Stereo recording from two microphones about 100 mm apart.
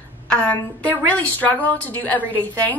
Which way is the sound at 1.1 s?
15° left (ahead or behind).